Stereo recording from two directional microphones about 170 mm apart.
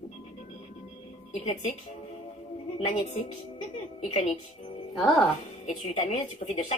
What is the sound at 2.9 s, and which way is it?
Speech, 45° left (ahead or behind).